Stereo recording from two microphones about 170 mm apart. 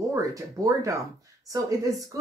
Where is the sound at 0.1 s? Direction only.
20° right (ahead or behind).